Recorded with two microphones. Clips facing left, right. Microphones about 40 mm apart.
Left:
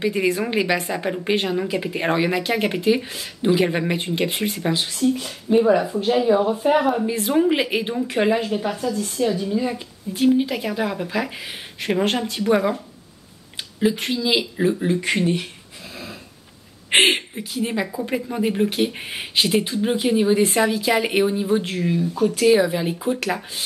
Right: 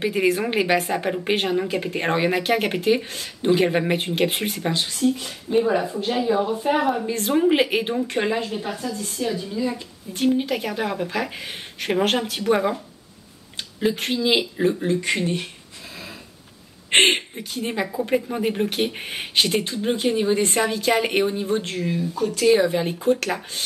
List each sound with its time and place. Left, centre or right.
0.0 s a woman's voice: centre
1.6 s a woman's voice: centre
10.1 s speech: centre
12.1 s speech: right
12.4 s speech: centre
13.7 s speech: centre
14.1 s a woman's voice: centre
14.4 s speech: centre
16.9 s speech: centre